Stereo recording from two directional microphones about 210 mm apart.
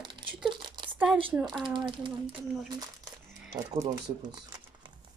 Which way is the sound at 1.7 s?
25° right (ahead or behind).